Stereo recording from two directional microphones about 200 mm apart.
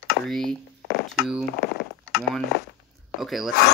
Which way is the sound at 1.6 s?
55° left (ahead or behind).